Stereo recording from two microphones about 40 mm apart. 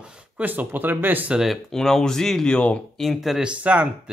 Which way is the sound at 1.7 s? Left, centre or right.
Centre.